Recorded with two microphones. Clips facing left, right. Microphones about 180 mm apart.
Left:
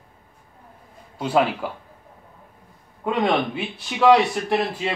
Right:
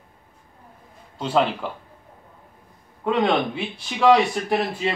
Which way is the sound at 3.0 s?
5° left (ahead or behind).